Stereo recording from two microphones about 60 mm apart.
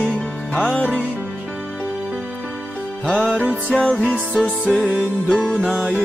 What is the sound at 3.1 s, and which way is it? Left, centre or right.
Music, centre.